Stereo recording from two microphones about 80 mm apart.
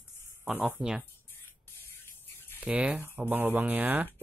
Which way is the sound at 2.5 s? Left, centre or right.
Centre.